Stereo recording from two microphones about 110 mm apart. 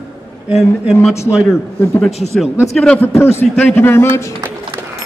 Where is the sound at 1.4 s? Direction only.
25° left (ahead or behind).